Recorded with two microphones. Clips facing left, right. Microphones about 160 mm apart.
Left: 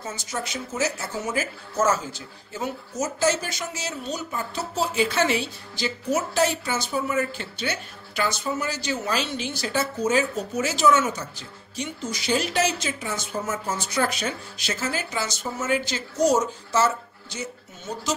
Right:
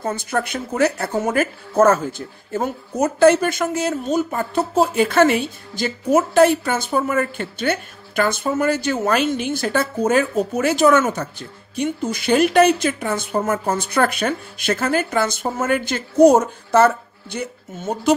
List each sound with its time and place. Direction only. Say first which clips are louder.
0.0 s speech: right 9 dB; 55° right (ahead or behind)